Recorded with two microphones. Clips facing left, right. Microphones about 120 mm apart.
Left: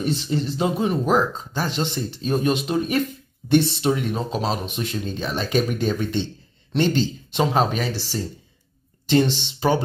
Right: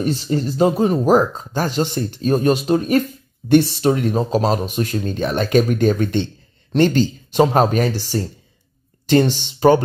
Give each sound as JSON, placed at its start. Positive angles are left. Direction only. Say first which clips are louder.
{"t": 0.0, "sound": "speech", "louder": "right 4 dB", "side_deg": -45}
{"t": 9.4, "sound": "speech", "louder": "right 8 dB", "side_deg": -50}